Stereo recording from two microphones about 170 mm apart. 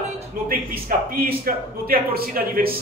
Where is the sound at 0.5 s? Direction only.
60° right (ahead or behind).